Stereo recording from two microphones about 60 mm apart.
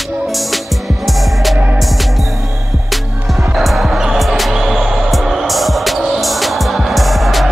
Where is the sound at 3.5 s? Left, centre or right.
Centre.